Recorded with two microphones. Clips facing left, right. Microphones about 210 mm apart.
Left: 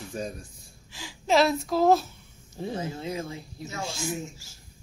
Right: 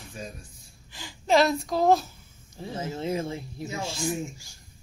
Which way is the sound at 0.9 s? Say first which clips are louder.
Right 1 dB; centre (ahead or behind).